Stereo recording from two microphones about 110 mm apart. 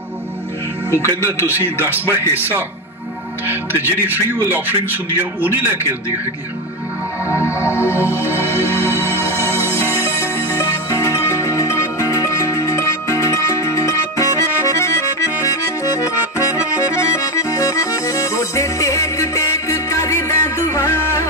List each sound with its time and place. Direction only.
0.9 s speech: 25° left (ahead or behind)
1.4 s speech: 20° right (ahead or behind)
7.6 s music: 15° right (ahead or behind)
10.6 s music: 25° left (ahead or behind)
14.8 s accordion: 25° left (ahead or behind)